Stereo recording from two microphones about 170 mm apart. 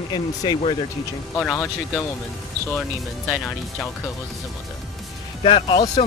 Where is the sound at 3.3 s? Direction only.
Centre (ahead or behind).